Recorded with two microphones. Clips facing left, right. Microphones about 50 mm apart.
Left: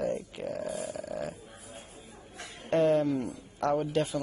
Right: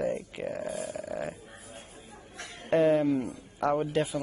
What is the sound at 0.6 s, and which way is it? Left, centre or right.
Speech, right.